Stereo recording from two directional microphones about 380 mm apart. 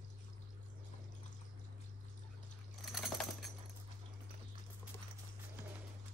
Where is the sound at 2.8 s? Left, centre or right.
Centre.